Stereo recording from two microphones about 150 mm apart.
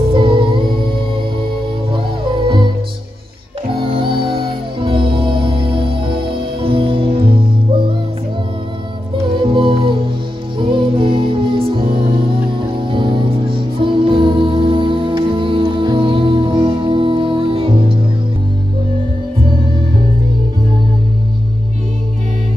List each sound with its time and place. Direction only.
0.1 s music: 35° right (ahead or behind)
2.4 s music: 30° right (ahead or behind)
3.7 s music: 35° right (ahead or behind)
9.4 s music: 35° right (ahead or behind)